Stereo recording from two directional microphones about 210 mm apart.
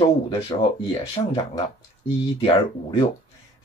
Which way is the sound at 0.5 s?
20° left (ahead or behind).